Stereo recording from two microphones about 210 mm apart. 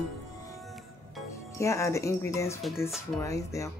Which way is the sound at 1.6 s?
15° left (ahead or behind).